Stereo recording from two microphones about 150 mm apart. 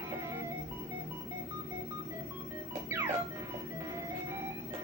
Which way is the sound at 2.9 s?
15° right (ahead or behind).